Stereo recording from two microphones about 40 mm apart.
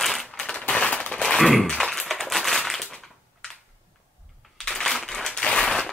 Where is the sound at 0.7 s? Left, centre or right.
Left.